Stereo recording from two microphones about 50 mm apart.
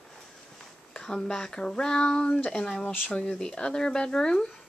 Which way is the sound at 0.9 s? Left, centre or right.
Centre.